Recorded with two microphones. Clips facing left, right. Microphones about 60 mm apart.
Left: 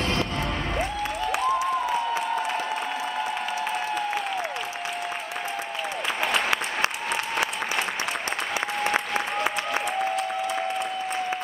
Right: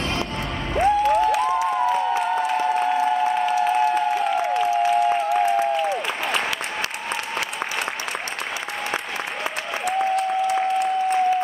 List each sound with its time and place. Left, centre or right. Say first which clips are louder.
0.7 s music: right 16 dB; right
9.8 s applause: right 5 dB; right